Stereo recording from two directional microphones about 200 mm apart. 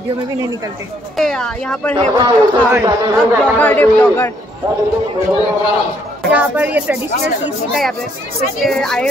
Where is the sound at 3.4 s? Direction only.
10° left (ahead or behind).